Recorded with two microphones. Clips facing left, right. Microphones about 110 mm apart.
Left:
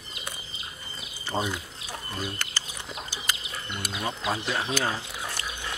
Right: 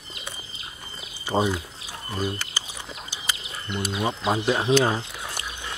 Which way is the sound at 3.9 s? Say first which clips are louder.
Right 5 dB; 25° right (ahead or behind).